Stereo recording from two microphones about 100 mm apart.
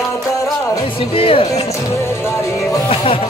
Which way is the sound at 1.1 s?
70° left (ahead or behind).